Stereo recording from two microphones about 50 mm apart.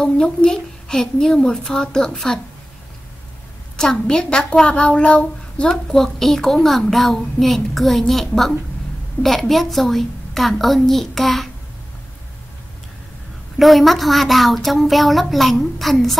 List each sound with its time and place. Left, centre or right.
0.0 s a woman's voice: centre
3.7 s a woman's voice: centre
5.9 s a woman's voice: centre
13.6 s a woman's voice: centre